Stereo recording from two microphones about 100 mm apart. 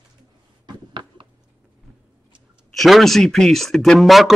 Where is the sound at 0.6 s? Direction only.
50° right (ahead or behind).